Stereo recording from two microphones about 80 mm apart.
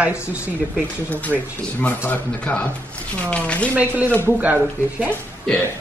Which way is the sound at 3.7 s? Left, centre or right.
Centre.